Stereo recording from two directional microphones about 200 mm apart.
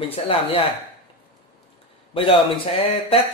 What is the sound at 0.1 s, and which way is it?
Speech, 30° left (ahead or behind).